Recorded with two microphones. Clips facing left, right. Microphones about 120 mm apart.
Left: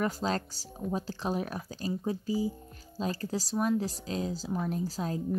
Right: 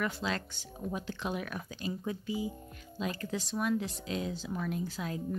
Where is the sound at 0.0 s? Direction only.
40° left (ahead or behind).